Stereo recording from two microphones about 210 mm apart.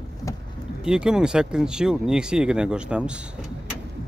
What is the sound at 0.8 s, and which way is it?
Speech, 5° right (ahead or behind).